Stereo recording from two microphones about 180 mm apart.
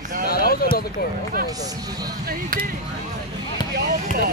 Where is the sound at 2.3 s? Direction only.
50° right (ahead or behind).